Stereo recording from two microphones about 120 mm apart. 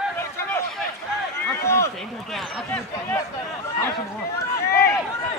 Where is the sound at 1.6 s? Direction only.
25° left (ahead or behind).